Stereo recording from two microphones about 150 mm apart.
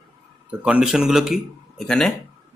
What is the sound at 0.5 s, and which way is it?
Speech, 10° right (ahead or behind).